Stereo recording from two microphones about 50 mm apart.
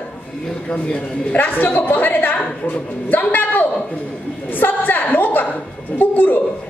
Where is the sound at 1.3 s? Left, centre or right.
Left.